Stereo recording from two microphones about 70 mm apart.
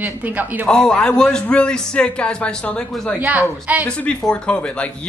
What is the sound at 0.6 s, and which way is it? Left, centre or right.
A man's voice, centre.